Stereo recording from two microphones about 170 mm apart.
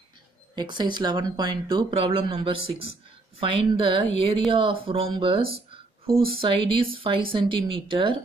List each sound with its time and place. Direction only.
0.6 s speech: 25° right (ahead or behind)